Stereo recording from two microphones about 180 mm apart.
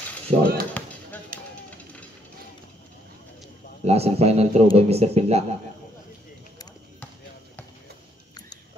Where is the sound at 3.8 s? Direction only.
35° right (ahead or behind).